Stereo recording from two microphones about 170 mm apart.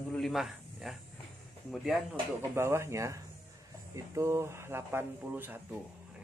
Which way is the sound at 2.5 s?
15° right (ahead or behind).